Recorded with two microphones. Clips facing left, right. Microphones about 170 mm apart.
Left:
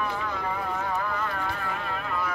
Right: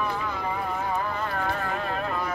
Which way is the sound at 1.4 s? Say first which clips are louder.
Right 3 dB; 40° right (ahead or behind).